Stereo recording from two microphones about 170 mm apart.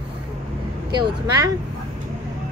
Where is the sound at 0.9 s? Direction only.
25° right (ahead or behind).